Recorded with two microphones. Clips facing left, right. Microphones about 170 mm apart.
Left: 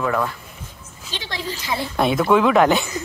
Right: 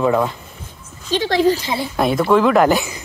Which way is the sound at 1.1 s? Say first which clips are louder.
Right 14 dB; 45° right (ahead or behind).